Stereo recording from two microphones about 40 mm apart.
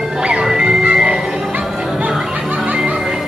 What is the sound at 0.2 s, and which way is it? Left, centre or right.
Music, right.